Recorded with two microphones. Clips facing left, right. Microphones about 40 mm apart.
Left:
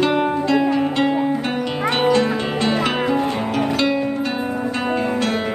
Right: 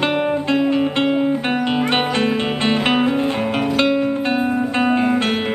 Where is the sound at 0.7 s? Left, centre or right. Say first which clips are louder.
Right 1 dB; right.